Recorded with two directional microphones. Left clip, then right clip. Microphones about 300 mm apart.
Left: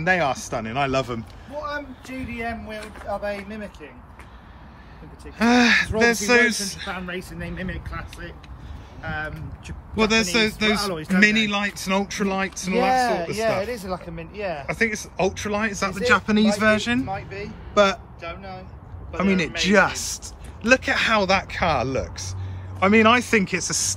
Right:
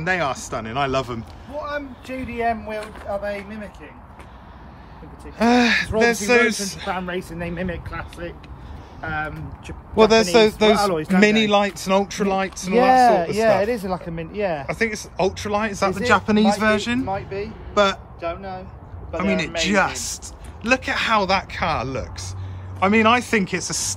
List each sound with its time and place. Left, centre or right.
0.0 s speech: centre
2.8 s speech: centre
5.4 s speech: centre
7.0 s speech: centre
9.9 s speech: centre
10.9 s speech: right
11.1 s speech: centre
13.0 s speech: right
14.7 s speech: centre
17.7 s speech: centre
18.2 s speech: centre
19.1 s speech: centre